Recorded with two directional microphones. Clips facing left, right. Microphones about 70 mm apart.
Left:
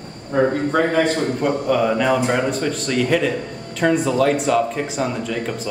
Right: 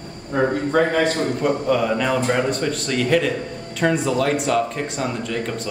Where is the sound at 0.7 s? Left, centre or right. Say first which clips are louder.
Right 1 dB; centre.